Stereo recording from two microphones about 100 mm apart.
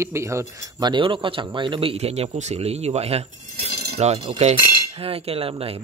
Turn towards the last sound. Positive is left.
turn(degrees=-75)  # may be behind; listen again after turning